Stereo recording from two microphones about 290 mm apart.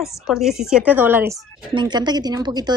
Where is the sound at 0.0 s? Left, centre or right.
Centre.